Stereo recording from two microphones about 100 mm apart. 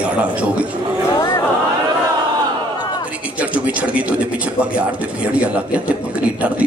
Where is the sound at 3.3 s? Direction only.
15° right (ahead or behind).